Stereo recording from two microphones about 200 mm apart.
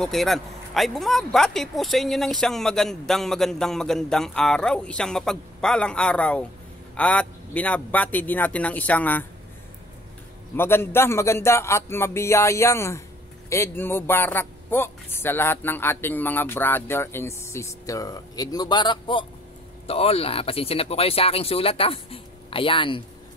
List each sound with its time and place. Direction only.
0.0 s a man's voice: centre (ahead or behind)
10.5 s a man's voice: 10° left (ahead or behind)